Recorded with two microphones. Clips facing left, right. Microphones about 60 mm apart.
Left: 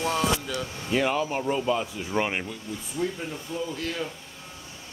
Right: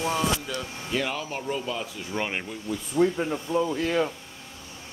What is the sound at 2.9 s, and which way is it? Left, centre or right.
Speech, right.